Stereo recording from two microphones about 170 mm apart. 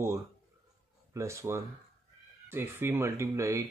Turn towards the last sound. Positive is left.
turn(degrees=-15)  # may be behind; listen again after turning